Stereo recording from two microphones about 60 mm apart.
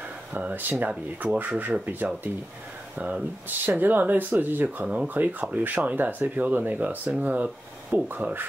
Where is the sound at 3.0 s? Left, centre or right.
Right.